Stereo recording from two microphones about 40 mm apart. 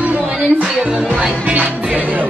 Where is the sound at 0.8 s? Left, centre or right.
Centre.